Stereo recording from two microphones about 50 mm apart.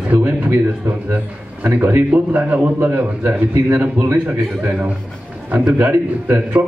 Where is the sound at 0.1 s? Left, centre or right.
Right.